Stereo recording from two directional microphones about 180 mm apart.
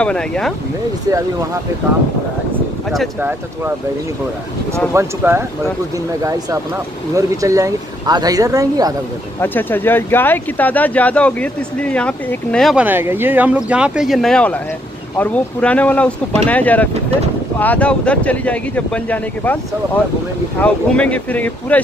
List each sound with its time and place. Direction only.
0.0 s speech: 5° left (ahead or behind)
3.2 s speech: 10° right (ahead or behind)
4.9 s speech: 15° right (ahead or behind)
7.2 s speech: 15° right (ahead or behind)
9.4 s speech: 10° left (ahead or behind)
12.8 s speech: 10° right (ahead or behind); by 19.6 s 10° left (ahead or behind)
20.6 s speech: 5° left (ahead or behind)